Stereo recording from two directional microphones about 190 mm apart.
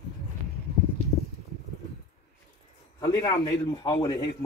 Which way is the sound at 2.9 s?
15° left (ahead or behind).